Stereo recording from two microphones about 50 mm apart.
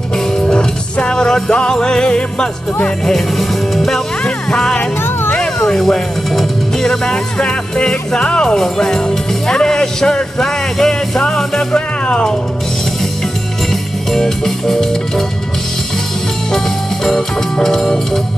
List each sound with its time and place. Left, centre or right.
0.5 s music: centre
3.1 s speech: centre
4.7 s music: left
5.8 s speech: centre
14.1 s speech: centre
16.5 s speech: centre